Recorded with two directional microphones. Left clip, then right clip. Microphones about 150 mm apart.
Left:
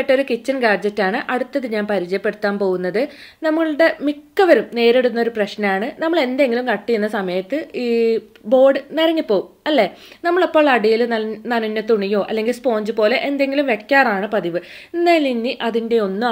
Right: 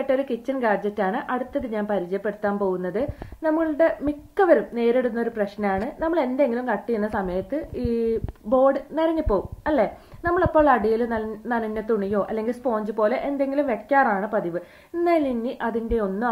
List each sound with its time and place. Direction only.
0.0 s a woman's voice: 25° left (ahead or behind)
11.1 s a woman's voice: 25° left (ahead or behind)